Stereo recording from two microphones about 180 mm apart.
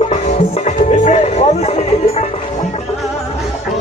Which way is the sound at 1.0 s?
40° left (ahead or behind).